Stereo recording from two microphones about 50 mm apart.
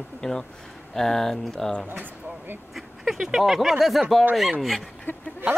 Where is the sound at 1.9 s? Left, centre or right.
Right.